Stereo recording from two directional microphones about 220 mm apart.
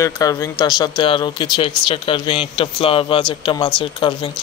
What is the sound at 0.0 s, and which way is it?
A man's voice, 15° left (ahead or behind).